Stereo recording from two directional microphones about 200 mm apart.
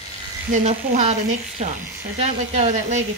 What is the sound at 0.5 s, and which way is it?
Speech, 35° right (ahead or behind).